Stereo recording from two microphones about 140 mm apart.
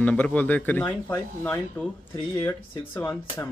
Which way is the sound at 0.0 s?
10° left (ahead or behind).